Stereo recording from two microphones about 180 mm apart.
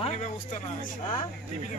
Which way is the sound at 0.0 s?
40° left (ahead or behind).